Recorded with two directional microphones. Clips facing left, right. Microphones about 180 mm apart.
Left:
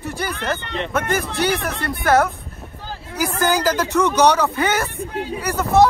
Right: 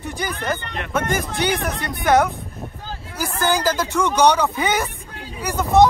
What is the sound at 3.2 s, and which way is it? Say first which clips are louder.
A man's voice: left 2 dB; 10° left (ahead or behind).